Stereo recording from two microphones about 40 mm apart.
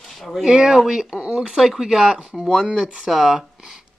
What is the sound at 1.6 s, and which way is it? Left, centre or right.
Speech, centre.